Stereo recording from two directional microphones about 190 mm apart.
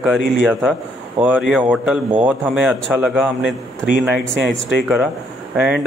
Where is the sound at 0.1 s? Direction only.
5° right (ahead or behind).